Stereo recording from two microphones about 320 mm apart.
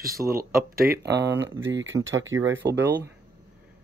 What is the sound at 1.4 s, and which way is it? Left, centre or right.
Speech, right.